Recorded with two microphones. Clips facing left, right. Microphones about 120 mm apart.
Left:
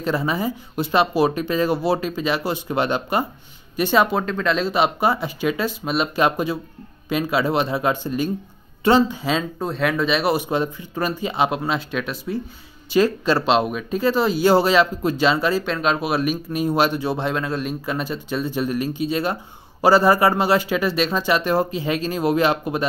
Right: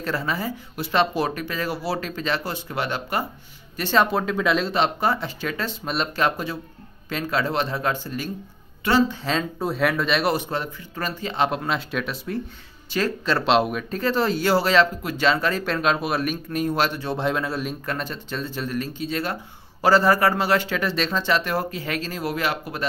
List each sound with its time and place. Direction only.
0.0 s speech: 20° left (ahead or behind)
4.0 s speech: centre (ahead or behind); by 8.3 s 20° left (ahead or behind)
9.1 s speech: 5° left (ahead or behind)
9.6 s speech: 5° right (ahead or behind)
10.5 s speech: 15° left (ahead or behind)
12.9 s speech: 15° left (ahead or behind)
13.5 s speech: centre (ahead or behind)
14.4 s speech: 20° left (ahead or behind)
15.5 s speech: centre (ahead or behind)
17.2 s speech: centre (ahead or behind); by 22.8 s 20° left (ahead or behind)